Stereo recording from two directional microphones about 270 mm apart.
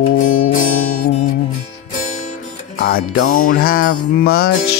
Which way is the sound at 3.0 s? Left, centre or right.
Left.